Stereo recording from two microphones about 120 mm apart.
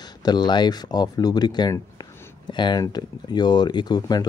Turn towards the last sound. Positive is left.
turn(degrees=35)  # may be behind; listen again after turning